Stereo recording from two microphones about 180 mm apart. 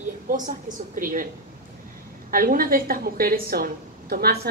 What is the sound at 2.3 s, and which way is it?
A woman's voice, 50° right (ahead or behind).